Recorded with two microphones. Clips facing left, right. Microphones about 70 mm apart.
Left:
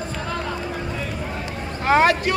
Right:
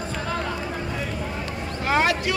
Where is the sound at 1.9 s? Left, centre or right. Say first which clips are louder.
Left 5 dB; left.